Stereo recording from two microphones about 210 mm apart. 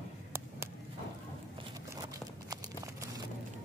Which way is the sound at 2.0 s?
15° right (ahead or behind).